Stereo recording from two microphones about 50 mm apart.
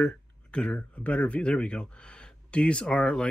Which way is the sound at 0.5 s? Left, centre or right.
Left.